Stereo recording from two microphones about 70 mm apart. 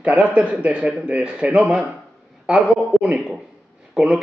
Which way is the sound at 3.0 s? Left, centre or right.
Centre.